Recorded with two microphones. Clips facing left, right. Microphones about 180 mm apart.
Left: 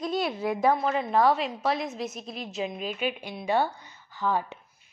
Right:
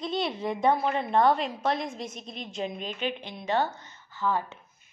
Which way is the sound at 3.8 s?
15° left (ahead or behind).